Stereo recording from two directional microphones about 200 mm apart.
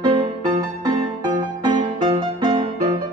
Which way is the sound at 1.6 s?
25° right (ahead or behind).